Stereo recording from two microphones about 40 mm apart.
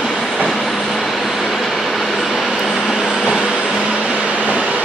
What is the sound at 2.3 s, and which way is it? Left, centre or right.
Vehicle, centre.